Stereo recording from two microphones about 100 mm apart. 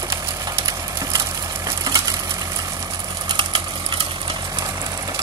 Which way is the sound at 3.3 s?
55° right (ahead or behind).